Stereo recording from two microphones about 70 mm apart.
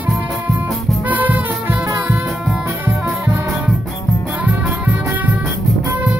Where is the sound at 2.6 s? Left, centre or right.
Right.